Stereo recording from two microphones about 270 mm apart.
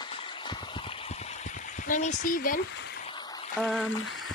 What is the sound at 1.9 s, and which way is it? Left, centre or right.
Speech, left.